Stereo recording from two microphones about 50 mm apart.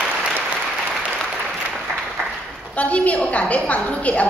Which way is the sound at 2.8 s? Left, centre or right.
Left.